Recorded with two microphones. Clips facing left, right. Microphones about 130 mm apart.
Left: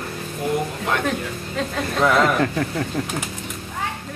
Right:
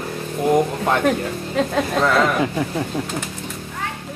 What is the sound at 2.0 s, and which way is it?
Speech, centre (ahead or behind).